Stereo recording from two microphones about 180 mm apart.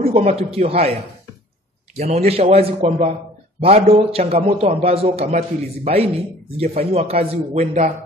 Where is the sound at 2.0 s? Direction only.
35° right (ahead or behind).